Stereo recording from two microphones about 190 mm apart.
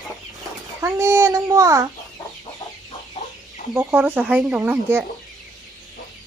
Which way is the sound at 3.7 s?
10° right (ahead or behind).